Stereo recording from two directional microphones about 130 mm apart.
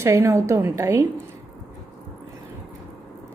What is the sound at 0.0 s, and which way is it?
A woman's voice, 20° right (ahead or behind).